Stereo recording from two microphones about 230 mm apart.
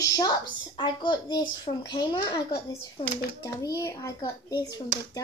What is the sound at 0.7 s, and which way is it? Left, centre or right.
A child's voice, centre.